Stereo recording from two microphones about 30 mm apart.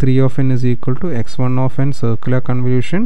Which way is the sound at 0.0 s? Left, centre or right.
Right.